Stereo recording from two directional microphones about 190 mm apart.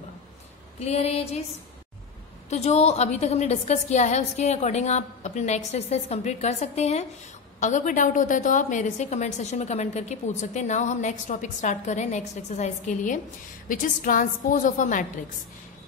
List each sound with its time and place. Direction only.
0.7 s a woman's voice: 35° left (ahead or behind)
2.5 s a woman's voice: 35° left (ahead or behind)